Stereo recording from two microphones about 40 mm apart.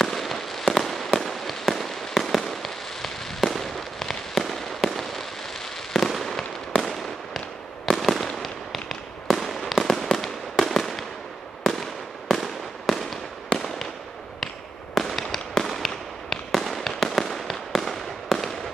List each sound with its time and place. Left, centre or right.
0.0 s fireworks: centre
15.0 s fireworks: centre